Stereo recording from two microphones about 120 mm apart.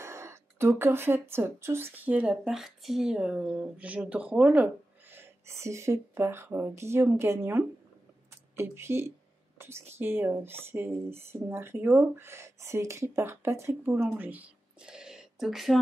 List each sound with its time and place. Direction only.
0.0 s speech: 25° right (ahead or behind); by 15.8 s centre (ahead or behind)